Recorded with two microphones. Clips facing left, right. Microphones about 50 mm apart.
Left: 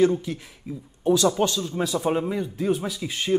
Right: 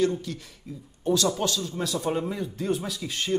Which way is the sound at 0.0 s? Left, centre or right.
Centre.